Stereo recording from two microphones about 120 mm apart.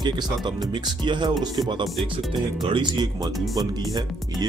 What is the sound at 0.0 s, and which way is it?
Speech, 35° right (ahead or behind).